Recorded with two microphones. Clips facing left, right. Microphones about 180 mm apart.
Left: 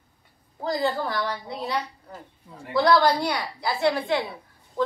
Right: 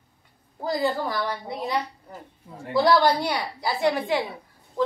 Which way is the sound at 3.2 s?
10° right (ahead or behind).